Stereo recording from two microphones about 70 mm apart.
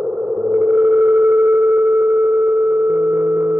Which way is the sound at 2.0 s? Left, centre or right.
Right.